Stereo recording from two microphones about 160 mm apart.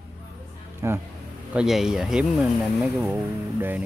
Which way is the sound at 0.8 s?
15° right (ahead or behind).